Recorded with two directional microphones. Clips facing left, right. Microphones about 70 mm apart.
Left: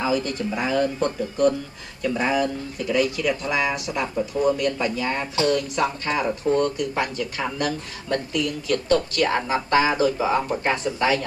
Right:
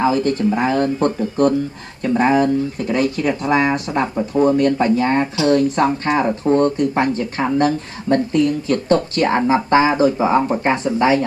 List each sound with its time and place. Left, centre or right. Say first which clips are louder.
0.0 s speech: right 7 dB; right